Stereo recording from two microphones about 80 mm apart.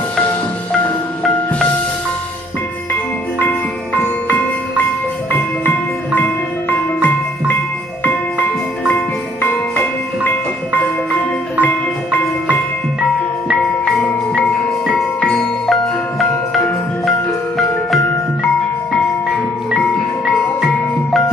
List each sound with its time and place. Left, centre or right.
5.3 s music: left
8.9 s music: left
11.6 s music: left
14.0 s marimba: centre
15.2 s music: centre
20.6 s music: centre